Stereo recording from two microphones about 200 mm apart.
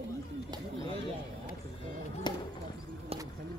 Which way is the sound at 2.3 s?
20° left (ahead or behind).